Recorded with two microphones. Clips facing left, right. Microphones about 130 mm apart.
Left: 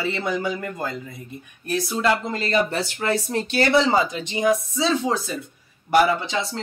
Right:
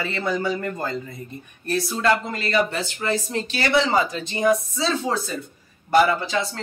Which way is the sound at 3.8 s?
15° left (ahead or behind).